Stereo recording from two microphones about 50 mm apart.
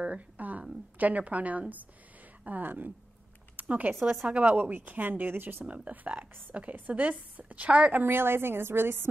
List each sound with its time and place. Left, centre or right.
0.0 s a sound: right
0.9 s a woman's voice: right
3.5 s a sound: right
4.2 s a woman's voice: right
5.7 s a woman's voice: right
7.9 s a woman's voice: right